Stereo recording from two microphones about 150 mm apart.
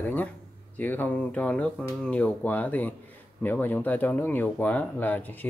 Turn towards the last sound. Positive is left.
turn(degrees=10)  # may be behind; listen again after turning